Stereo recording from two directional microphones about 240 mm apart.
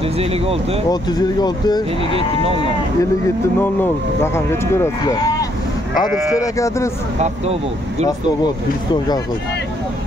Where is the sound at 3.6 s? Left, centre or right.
Centre.